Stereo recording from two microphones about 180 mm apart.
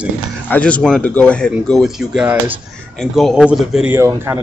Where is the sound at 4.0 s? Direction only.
15° right (ahead or behind).